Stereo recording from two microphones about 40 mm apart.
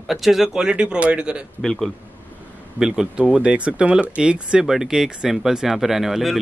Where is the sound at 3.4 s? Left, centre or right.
Right.